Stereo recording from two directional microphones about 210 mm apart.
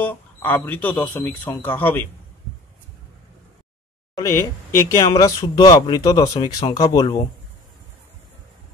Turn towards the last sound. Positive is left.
turn(degrees=20)  # may be behind; listen again after turning